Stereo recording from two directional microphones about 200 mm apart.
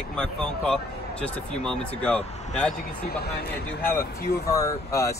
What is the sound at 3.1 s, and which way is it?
Speech, 50° left (ahead or behind).